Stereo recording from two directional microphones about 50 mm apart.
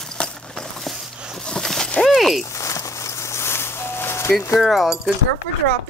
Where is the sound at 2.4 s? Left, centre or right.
Left.